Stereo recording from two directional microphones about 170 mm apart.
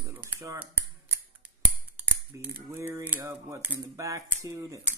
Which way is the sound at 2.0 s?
15° right (ahead or behind).